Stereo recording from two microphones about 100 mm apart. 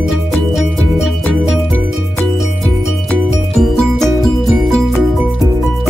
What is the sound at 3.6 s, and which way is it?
Music, centre (ahead or behind).